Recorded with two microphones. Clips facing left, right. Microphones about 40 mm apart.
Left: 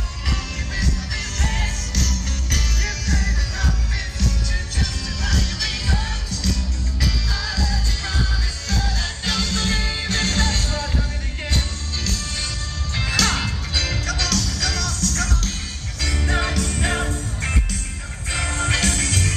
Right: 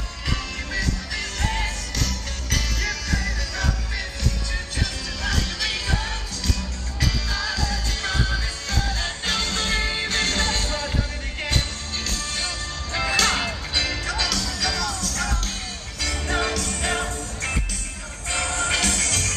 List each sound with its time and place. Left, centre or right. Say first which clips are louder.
0.7 s music: even; centre
5.2 s music: even; right
7.0 s music: right 1 dB; right
8.6 s music: left 2 dB; right
11.5 s music: left 2 dB; right
13.1 s music: left 1 dB; centre